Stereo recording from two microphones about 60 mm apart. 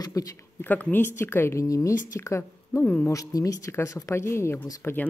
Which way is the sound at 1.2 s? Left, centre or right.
Left.